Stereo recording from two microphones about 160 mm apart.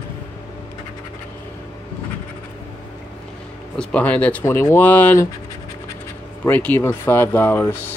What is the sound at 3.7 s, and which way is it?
Speech, 10° left (ahead or behind).